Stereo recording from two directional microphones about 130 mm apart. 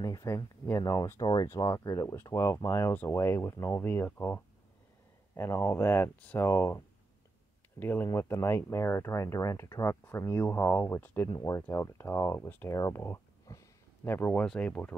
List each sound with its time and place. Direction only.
0.0 s speech: 25° left (ahead or behind)
7.8 s speech: 15° left (ahead or behind)
11.2 s speech: 25° left (ahead or behind)